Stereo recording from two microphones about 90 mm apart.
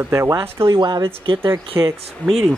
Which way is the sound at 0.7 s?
55° right (ahead or behind).